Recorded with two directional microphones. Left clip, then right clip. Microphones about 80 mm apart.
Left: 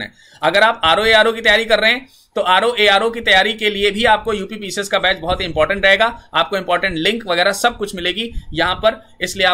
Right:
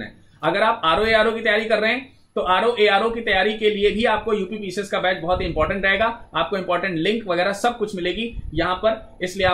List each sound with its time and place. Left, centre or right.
0.0 s speech: left